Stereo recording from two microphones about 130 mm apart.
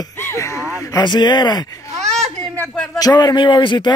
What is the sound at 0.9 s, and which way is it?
Speech, 35° left (ahead or behind).